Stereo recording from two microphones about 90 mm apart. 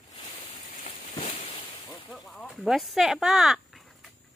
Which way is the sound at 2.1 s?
Centre (ahead or behind).